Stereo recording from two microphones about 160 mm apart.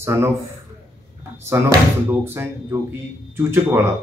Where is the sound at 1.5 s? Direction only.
15° right (ahead or behind).